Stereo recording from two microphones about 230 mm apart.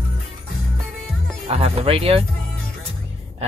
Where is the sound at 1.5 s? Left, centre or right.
Right.